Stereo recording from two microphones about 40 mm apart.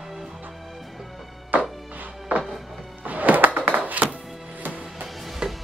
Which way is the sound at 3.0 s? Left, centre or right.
Right.